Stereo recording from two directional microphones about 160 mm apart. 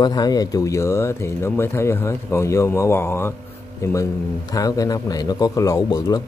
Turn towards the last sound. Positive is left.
turn(degrees=25)  # may be behind; listen again after turning